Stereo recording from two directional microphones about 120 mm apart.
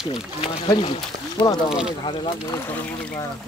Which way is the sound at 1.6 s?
5° right (ahead or behind).